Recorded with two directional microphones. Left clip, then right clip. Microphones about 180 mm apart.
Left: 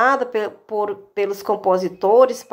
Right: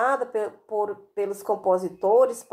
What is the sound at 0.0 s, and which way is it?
Speech, 30° left (ahead or behind).